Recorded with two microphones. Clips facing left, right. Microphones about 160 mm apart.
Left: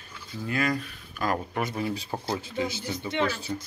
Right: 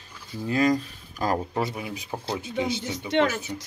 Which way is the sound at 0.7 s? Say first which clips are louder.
Right 3 dB; 30° right (ahead or behind).